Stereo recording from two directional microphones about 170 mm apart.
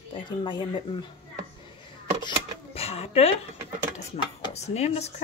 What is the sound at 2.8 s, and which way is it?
Speech, 35° left (ahead or behind).